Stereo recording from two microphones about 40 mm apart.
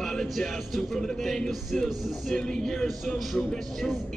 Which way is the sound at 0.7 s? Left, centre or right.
Centre.